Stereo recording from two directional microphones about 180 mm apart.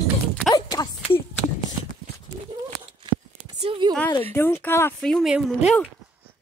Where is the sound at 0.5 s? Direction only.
20° left (ahead or behind).